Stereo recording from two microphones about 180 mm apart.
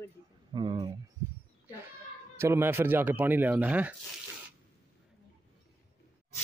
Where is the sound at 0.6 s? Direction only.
25° right (ahead or behind).